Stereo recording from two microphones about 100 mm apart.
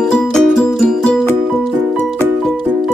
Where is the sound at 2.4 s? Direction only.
5° left (ahead or behind).